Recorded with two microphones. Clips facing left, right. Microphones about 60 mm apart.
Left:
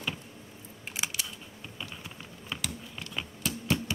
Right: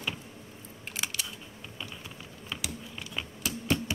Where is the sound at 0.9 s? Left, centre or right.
Centre.